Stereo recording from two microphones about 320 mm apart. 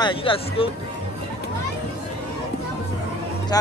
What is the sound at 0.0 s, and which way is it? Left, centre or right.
Speech, centre.